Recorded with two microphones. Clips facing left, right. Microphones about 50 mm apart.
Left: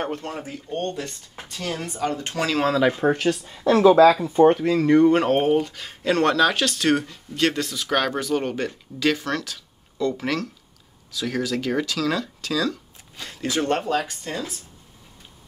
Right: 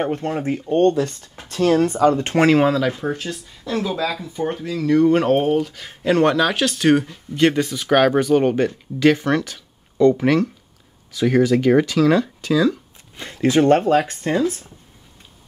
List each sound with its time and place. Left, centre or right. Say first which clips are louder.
0.1 s speech: right 8 dB; right
0.7 s speech: right 12 dB; right
2.0 s speech: right 8 dB; right
3.0 s speech: left 5 dB; left
4.4 s speech: left 5 dB; left
5.0 s speech: right 2 dB; centre; by 14.4 s right